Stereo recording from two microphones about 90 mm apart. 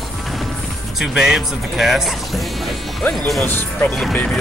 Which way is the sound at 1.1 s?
5° right (ahead or behind).